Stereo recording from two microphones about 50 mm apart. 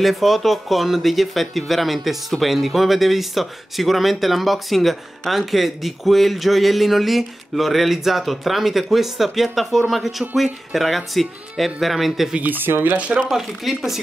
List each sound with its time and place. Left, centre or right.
0.0 s speech: centre
12.4 s speech: right
12.9 s speech: right
13.7 s speech: centre